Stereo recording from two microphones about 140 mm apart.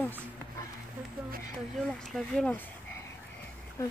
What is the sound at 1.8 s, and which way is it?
Speech, centre (ahead or behind).